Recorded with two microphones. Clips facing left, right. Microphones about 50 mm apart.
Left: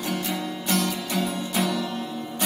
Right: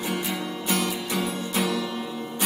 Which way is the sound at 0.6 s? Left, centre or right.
Centre.